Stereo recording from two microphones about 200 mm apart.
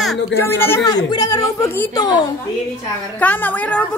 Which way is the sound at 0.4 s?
10° left (ahead or behind).